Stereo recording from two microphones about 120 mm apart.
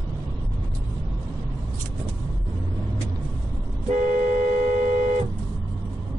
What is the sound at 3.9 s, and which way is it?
Vehicle, 90° right.